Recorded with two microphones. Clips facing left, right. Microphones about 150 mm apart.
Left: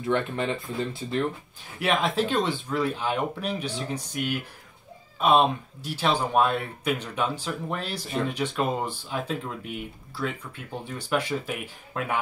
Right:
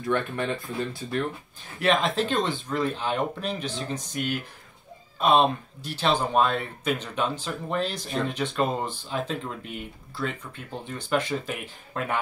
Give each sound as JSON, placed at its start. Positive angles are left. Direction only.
{"t": 0.0, "sound": "speech", "side_deg": 20}
{"t": 1.8, "sound": "speech", "side_deg": 10}